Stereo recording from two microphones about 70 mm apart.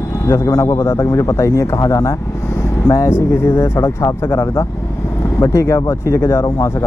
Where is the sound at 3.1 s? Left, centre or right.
Left.